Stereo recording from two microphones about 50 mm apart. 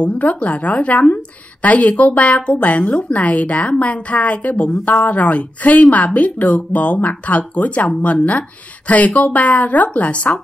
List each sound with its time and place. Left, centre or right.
0.0 s a woman's voice: left